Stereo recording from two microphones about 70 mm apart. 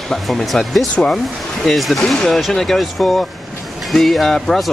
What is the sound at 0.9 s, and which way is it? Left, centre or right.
Speech, centre.